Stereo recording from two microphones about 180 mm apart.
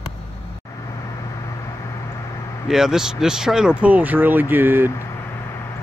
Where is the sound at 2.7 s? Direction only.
Centre (ahead or behind).